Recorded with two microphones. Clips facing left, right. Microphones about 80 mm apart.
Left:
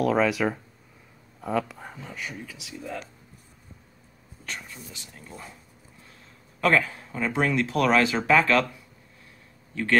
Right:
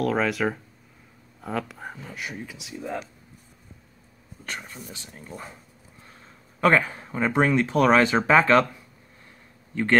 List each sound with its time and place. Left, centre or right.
0.0 s speech: centre
2.3 s speech: right
4.5 s speech: right
6.6 s speech: right